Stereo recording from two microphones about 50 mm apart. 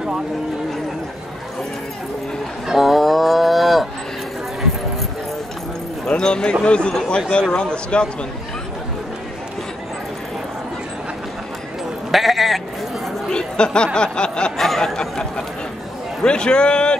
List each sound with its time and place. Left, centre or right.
2.7 s cattle: centre
6.0 s speech: centre
12.1 s sheep: centre
13.3 s a sound: centre
13.9 s speech: centre
14.6 s a sound: centre
16.2 s speech: centre